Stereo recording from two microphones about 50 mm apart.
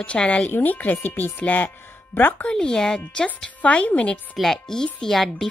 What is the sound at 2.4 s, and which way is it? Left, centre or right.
Speech, centre.